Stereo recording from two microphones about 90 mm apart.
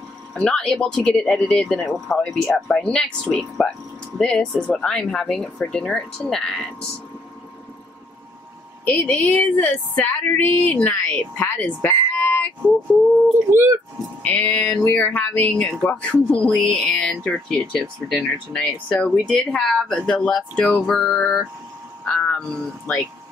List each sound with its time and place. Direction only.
0.3 s speech: 10° left (ahead or behind)
8.8 s speech: 15° left (ahead or behind)
13.5 s speech: 25° right (ahead or behind)
14.2 s speech: 20° left (ahead or behind)
22.0 s a sound: 15° left (ahead or behind)